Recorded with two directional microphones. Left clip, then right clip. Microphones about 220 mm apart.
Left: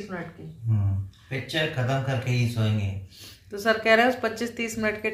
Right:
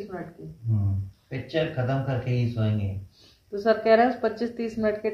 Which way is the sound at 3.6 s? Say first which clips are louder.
Even; 25° left (ahead or behind).